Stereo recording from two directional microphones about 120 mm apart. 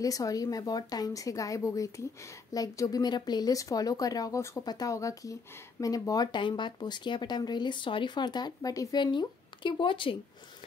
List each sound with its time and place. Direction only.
0.0 s a woman's voice: 30° left (ahead or behind); by 10.1 s 45° left (ahead or behind)